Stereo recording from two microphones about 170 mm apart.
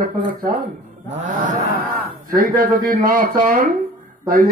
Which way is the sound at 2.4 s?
50° right (ahead or behind).